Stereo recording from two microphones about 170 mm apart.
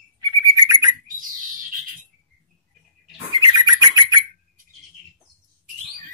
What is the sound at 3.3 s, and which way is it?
Bird, 25° right (ahead or behind).